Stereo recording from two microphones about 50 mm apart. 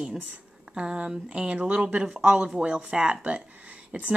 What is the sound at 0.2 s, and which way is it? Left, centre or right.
Speech, right.